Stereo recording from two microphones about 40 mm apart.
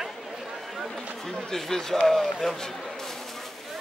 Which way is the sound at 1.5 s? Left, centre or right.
Centre.